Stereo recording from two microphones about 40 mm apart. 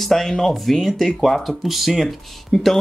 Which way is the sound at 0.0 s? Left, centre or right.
Centre.